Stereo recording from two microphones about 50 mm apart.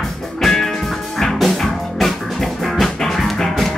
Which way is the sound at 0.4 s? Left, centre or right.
Centre.